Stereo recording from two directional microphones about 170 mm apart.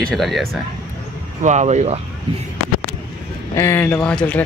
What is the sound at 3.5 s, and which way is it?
Speech, 15° left (ahead or behind).